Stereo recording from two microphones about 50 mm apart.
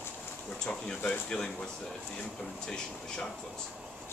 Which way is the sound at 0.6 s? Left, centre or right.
Centre.